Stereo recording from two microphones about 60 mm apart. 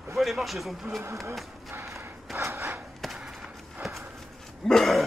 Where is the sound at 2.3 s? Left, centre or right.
Right.